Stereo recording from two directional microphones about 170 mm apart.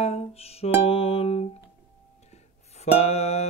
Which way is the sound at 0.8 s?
35° left (ahead or behind).